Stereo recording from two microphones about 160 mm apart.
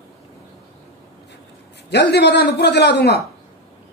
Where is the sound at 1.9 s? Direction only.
90° left.